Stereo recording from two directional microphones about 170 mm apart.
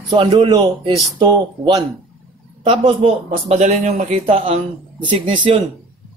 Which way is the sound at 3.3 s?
40° right (ahead or behind).